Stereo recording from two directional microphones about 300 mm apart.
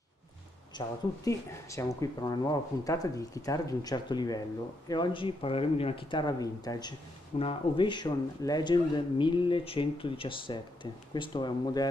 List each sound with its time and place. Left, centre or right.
0.7 s speech: centre